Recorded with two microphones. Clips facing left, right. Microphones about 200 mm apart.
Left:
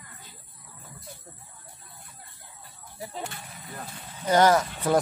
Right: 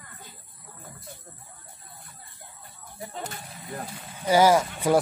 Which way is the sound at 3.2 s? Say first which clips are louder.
Right 1 dB; 40° right (ahead or behind).